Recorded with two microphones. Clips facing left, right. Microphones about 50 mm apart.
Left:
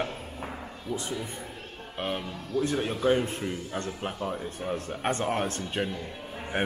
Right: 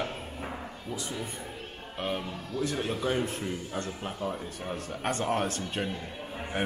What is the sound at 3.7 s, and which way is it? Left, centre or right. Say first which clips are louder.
Speech: left 2 dB; left.